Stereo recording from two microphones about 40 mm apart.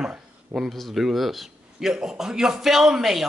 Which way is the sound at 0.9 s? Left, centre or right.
Centre.